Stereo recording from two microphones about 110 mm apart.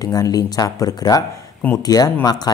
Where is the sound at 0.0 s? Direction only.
35° left (ahead or behind).